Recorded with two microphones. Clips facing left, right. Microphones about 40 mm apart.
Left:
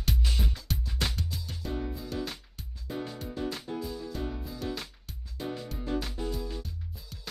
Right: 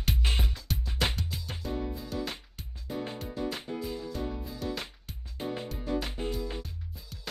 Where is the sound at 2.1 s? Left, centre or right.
Centre.